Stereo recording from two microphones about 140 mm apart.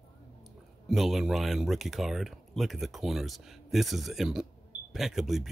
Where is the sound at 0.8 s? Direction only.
Centre (ahead or behind).